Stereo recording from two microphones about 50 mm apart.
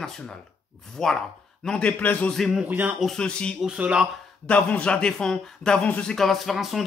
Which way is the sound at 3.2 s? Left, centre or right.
Left.